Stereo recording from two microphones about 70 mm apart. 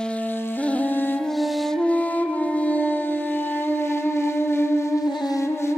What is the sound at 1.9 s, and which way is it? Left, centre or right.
Music, left.